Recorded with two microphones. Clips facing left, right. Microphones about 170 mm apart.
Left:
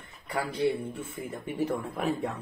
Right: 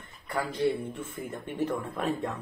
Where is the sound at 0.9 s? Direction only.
10° left (ahead or behind).